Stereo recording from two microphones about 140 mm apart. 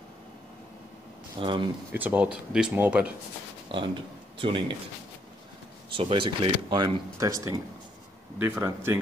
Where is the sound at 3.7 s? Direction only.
40° right (ahead or behind).